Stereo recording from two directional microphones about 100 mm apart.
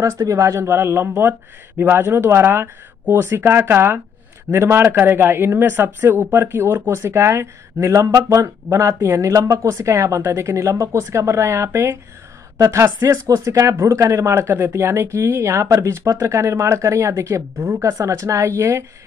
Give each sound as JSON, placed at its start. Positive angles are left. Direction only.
{"t": 0.0, "sound": "speech", "side_deg": -30}